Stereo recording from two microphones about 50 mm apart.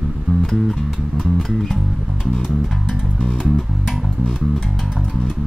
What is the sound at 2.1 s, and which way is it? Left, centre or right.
Music, centre.